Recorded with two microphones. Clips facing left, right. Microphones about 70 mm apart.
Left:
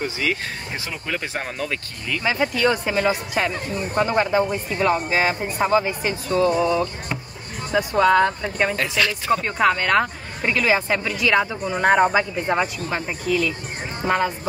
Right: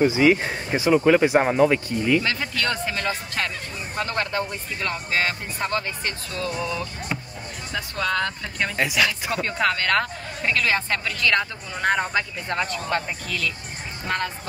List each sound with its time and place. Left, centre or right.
0.0 s speech: centre
2.2 s speech: centre
7.7 s speech: centre
8.7 s speech: centre
9.3 s speech: centre